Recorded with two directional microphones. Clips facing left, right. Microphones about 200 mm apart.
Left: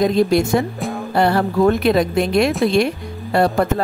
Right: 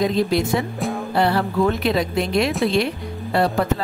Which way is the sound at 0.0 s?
45° left (ahead or behind).